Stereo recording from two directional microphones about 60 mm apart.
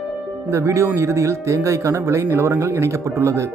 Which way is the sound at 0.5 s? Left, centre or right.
Right.